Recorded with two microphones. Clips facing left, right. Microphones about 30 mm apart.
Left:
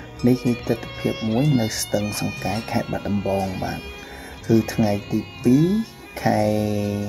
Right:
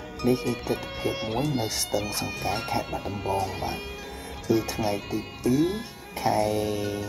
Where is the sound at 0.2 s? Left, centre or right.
Centre.